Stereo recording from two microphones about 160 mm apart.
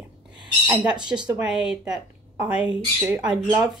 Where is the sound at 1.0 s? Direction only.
25° right (ahead or behind).